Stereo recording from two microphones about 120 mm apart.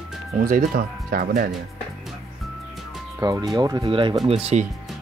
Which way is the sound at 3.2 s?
35° right (ahead or behind).